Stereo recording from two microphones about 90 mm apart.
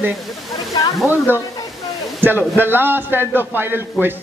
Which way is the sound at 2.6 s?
25° right (ahead or behind).